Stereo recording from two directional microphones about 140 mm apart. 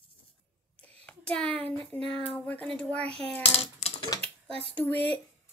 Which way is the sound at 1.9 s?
10° left (ahead or behind).